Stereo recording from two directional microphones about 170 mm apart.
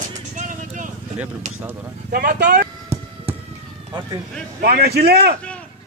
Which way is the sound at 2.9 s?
15° right (ahead or behind).